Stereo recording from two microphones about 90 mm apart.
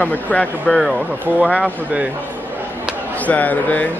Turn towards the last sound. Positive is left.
turn(degrees=20)  # may be behind; listen again after turning